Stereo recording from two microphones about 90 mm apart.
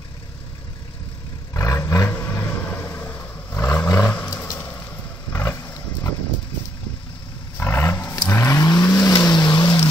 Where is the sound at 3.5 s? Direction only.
30° left (ahead or behind).